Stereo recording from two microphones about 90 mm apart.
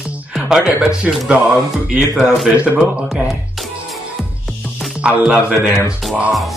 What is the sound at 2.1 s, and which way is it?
Speech, centre (ahead or behind).